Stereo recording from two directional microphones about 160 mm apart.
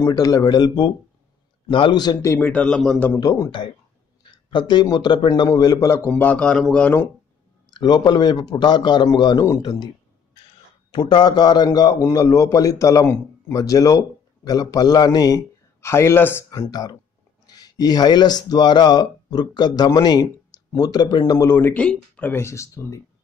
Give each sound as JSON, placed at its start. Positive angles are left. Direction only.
{"t": 0.0, "sound": "a man's voice", "side_deg": 20}
{"t": 3.1, "sound": "a man's voice", "side_deg": 20}
{"t": 6.0, "sound": "a man's voice", "side_deg": 10}
{"t": 7.7, "sound": "a man's voice", "side_deg": 25}
{"t": 10.9, "sound": "a man's voice", "side_deg": 30}